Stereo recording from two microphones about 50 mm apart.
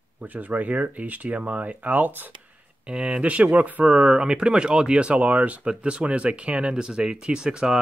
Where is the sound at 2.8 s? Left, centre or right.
Centre.